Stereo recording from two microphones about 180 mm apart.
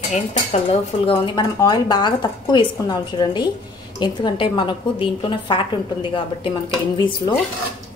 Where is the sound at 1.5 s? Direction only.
20° left (ahead or behind).